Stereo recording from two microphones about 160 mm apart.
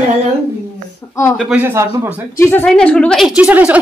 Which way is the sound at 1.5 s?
15° right (ahead or behind).